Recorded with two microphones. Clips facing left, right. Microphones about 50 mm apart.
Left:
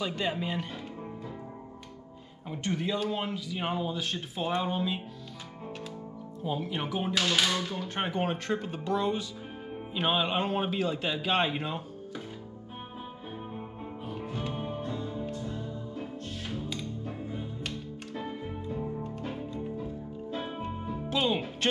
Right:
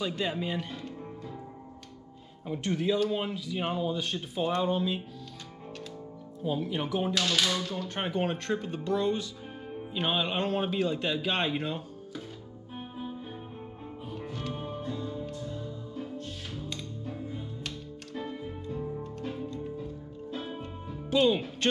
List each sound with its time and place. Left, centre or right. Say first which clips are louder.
0.0 s speech: even; centre
2.4 s speech: right 3 dB; centre
6.4 s speech: right 2 dB; centre
14.3 s music: left 2 dB; centre